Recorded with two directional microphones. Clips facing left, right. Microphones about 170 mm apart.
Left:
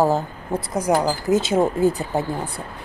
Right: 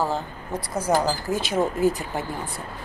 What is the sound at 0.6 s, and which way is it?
Speech, 15° left (ahead or behind).